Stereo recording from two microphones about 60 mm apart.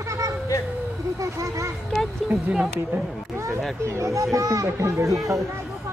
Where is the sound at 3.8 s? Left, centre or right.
Right.